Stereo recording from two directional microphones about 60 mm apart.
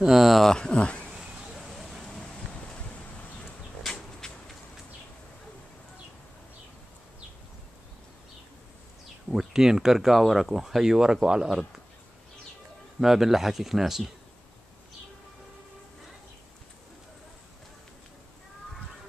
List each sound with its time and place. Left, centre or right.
0.0 s speech: centre
0.5 s speech: centre
1.1 s a sound: centre
4.2 s vehicle: centre
9.3 s speech: centre
13.0 s speech: centre